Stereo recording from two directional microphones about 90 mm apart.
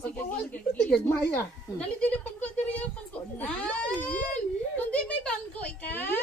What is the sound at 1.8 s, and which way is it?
Speech, 15° left (ahead or behind).